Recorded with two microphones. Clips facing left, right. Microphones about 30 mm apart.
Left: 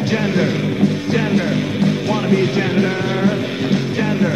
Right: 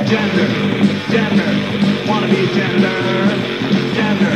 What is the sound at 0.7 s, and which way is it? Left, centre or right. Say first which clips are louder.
Music: right 2 dB; right.